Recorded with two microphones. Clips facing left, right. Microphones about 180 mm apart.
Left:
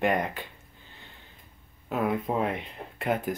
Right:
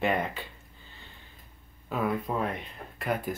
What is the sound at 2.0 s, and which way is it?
Speech, 25° left (ahead or behind).